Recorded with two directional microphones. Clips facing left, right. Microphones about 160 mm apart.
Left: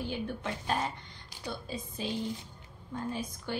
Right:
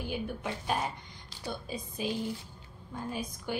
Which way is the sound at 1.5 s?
15° right (ahead or behind).